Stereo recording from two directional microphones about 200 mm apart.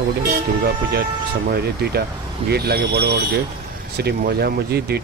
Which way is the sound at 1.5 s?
55° right (ahead or behind).